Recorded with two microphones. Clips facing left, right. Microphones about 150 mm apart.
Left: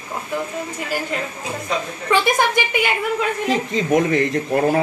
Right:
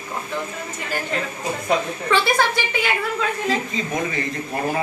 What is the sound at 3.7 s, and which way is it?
Speech, 70° left (ahead or behind).